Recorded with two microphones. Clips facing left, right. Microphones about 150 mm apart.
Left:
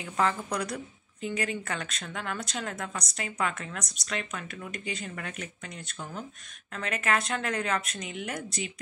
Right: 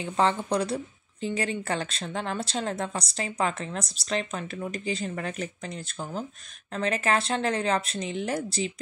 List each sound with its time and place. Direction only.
0.0 s a woman's voice: 30° right (ahead or behind)